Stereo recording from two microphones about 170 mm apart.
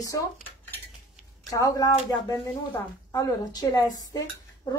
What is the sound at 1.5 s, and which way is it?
Speech, 20° left (ahead or behind).